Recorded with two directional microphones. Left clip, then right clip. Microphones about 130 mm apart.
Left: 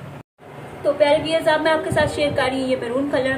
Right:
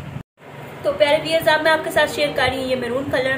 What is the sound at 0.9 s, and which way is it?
A woman's voice, 20° left (ahead or behind).